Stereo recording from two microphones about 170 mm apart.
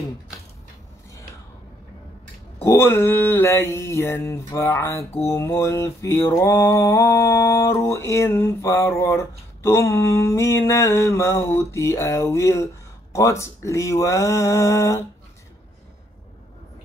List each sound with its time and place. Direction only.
2.6 s mantra: 15° left (ahead or behind)